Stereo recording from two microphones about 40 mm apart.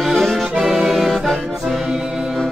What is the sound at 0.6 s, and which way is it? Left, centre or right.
Music, centre.